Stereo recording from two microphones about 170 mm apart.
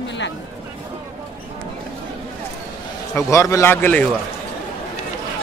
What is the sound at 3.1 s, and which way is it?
Speech, 15° left (ahead or behind).